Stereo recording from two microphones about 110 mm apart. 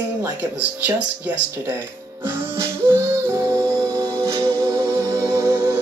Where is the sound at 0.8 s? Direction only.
15° right (ahead or behind).